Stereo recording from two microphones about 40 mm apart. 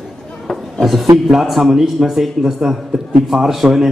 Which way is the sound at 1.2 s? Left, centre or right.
Centre.